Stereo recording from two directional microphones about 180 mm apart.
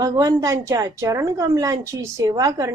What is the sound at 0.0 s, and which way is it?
A woman's voice, 20° right (ahead or behind).